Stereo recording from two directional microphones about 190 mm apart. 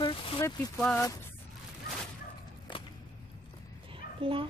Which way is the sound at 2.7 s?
25° left (ahead or behind).